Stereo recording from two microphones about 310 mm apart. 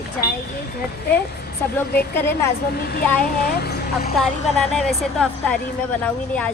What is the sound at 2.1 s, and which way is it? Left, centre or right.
Speech, centre.